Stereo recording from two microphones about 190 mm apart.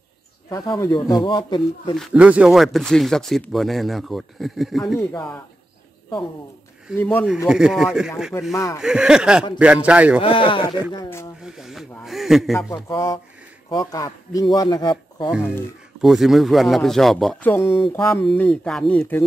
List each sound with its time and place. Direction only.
0.5 s speech: 20° left (ahead or behind)
2.0 s speech: 5° right (ahead or behind)
7.0 s speech: 10° left (ahead or behind)
7.4 s speech: 5° right (ahead or behind)
8.3 s speech: 15° left (ahead or behind)
8.7 s a man's voice: 5° right (ahead or behind)
10.2 s speech: 25° left (ahead or behind)
10.9 s speech: 15° left (ahead or behind)
11.4 s speech: centre (ahead or behind)
12.5 s speech: 15° left (ahead or behind)
16.0 s speech: centre (ahead or behind)